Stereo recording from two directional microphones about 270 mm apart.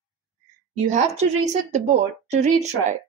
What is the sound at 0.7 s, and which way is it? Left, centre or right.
Speech, right.